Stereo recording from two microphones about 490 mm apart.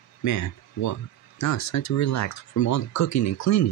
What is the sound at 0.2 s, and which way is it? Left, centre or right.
Speech, left.